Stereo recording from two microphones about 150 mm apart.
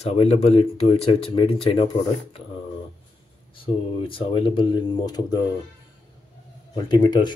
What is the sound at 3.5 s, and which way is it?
Speech, 35° left (ahead or behind).